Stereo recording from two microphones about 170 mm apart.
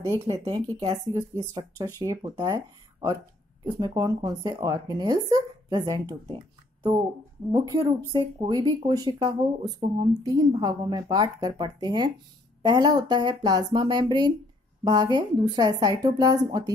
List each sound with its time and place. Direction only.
0.3 s speech: 20° right (ahead or behind)
7.5 s speech: 20° right (ahead or behind)